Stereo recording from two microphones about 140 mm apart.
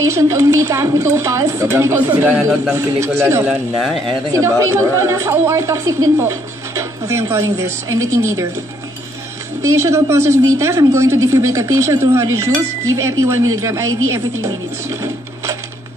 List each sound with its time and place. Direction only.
0.0 s a woman's voice: 20° right (ahead or behind)
9.6 s a woman's voice: 20° right (ahead or behind)